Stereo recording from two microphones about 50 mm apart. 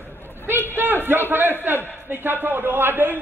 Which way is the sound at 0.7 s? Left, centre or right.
Right.